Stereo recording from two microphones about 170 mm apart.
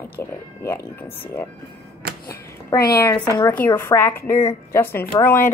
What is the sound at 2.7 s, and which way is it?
A woman's voice, 20° left (ahead or behind).